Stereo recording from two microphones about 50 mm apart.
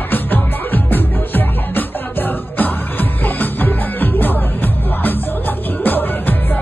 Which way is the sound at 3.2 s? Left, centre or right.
Left.